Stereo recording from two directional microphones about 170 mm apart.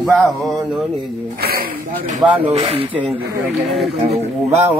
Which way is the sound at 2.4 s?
35° right (ahead or behind).